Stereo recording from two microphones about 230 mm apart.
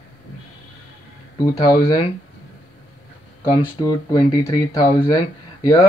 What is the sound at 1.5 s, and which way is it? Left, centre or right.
Speech, centre.